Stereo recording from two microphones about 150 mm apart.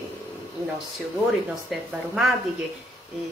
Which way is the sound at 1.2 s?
Centre (ahead or behind).